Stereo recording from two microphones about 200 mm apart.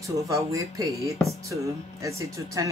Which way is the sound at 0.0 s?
15° right (ahead or behind).